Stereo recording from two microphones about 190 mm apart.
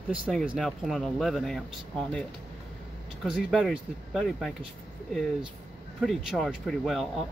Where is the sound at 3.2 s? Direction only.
Centre (ahead or behind).